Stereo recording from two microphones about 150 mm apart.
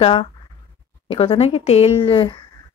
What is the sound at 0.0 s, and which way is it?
Speech, 35° left (ahead or behind).